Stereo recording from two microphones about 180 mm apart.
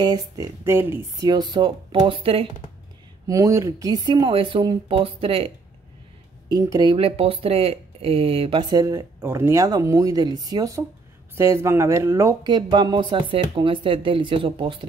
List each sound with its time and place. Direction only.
0.0 s speech: 20° right (ahead or behind)
3.3 s speech: 20° right (ahead or behind)
6.5 s speech: 20° right (ahead or behind)